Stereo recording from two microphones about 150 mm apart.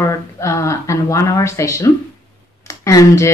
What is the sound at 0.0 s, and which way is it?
Speech, 20° left (ahead or behind).